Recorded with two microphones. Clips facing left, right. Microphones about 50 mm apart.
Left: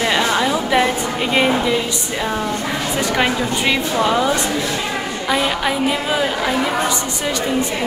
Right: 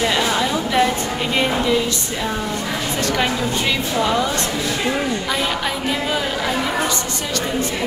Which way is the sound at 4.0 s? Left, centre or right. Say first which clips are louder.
Left 2 dB; centre.